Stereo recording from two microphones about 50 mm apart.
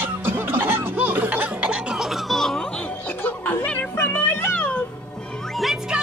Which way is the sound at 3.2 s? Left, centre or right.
Left.